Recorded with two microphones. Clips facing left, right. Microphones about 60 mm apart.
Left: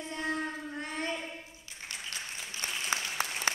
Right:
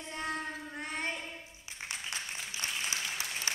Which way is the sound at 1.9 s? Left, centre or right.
Centre.